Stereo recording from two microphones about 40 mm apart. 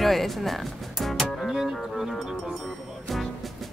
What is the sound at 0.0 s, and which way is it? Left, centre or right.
Music, centre.